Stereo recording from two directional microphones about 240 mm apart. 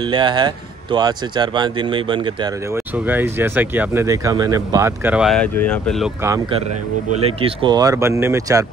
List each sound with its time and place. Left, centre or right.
0.0 s a man's voice: centre
6.2 s speech: centre